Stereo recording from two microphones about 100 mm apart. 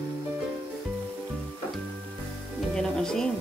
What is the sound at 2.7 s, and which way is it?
Music, 5° left (ahead or behind).